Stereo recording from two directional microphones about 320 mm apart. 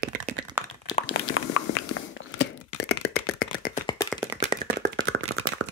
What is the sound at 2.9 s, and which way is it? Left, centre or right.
Beatboxing, left.